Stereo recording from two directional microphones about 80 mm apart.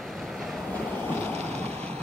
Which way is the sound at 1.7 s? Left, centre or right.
Centre.